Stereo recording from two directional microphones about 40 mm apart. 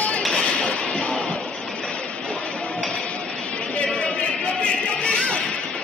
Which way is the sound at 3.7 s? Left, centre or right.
Left.